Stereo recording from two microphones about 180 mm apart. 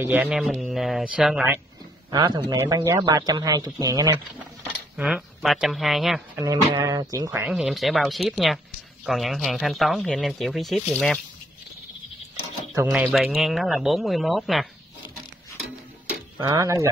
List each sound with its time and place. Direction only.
0.0 s speech: 10° right (ahead or behind)
2.0 s speech: 20° right (ahead or behind)
4.9 s speech: 5° right (ahead or behind)
6.3 s speech: 20° right (ahead or behind)
7.4 s speech: 5° right (ahead or behind)
12.9 s speech: 5° right (ahead or behind)
16.3 s speech: 20° right (ahead or behind)